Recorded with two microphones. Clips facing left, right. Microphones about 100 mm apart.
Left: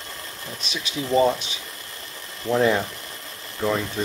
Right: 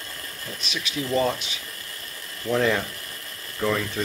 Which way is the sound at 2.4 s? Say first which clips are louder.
Left 3 dB; 20° left (ahead or behind).